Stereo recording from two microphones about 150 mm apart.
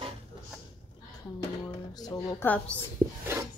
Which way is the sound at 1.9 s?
25° left (ahead or behind).